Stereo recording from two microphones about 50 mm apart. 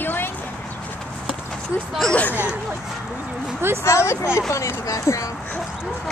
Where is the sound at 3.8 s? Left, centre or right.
Left.